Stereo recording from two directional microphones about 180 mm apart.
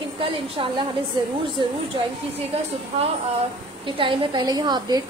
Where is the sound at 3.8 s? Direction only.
30° right (ahead or behind).